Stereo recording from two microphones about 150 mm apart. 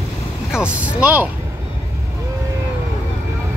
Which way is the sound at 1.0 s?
10° right (ahead or behind).